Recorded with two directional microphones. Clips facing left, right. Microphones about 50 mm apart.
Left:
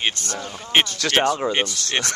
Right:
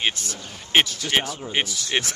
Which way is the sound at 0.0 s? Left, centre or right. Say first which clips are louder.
Left 1 dB; centre.